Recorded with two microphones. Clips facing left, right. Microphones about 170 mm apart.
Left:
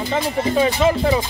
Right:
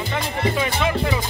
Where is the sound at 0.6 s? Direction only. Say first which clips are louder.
Left 10 dB; 35° left (ahead or behind).